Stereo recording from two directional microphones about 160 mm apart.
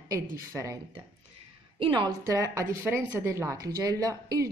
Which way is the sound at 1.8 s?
30° right (ahead or behind).